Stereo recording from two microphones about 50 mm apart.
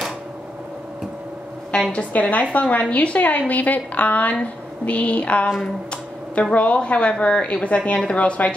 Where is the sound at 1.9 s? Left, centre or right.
Left.